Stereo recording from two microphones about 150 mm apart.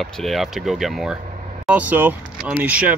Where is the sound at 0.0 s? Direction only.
Centre (ahead or behind).